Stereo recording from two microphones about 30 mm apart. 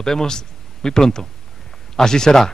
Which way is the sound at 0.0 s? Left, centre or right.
Centre.